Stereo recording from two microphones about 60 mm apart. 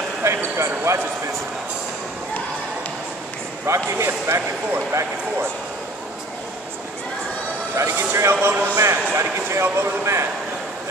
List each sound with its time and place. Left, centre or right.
0.2 s basketball bounce: right
3.6 s speech: right
7.7 s speech: right